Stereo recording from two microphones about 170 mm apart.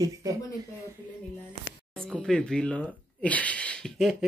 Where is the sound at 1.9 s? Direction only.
5° left (ahead or behind).